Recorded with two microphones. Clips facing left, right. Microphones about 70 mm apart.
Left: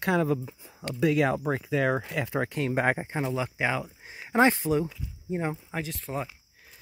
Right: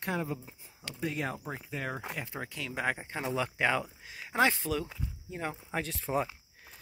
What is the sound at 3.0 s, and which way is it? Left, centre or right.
Speech, left.